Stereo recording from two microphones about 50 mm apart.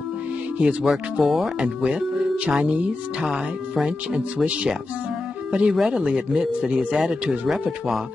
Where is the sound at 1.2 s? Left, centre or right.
Centre.